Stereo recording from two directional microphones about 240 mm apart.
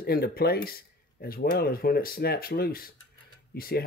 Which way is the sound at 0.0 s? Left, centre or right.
Left.